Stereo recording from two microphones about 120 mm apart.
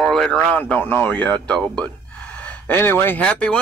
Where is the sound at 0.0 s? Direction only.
5° left (ahead or behind).